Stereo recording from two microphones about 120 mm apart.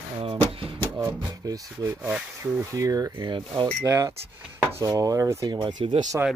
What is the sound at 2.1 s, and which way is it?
Speech, 10° right (ahead or behind).